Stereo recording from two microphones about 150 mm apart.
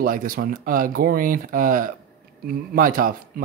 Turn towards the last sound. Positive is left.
turn(degrees=-70)  # may be behind; listen again after turning